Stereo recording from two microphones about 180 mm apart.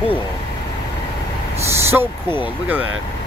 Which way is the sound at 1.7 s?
15° right (ahead or behind).